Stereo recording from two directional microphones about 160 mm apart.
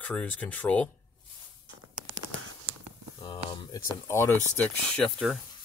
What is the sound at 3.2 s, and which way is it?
Speech, 30° left (ahead or behind).